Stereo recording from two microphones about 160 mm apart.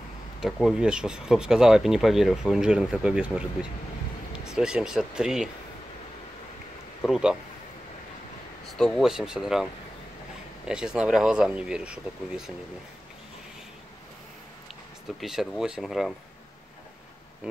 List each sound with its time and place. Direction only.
0.4 s speech: centre (ahead or behind)
7.0 s speech: 5° right (ahead or behind)
8.6 s speech: 5° left (ahead or behind)
15.1 s speech: centre (ahead or behind)